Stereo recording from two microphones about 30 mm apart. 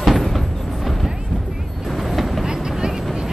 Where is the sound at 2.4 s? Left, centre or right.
Centre.